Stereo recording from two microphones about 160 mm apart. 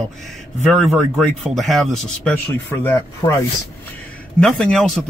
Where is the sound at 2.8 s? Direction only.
15° left (ahead or behind).